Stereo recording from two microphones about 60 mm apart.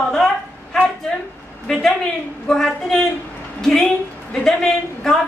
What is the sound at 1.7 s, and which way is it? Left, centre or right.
A woman's voice, centre.